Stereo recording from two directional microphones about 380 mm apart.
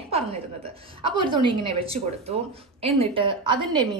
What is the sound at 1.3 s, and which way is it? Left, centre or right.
Speech, centre.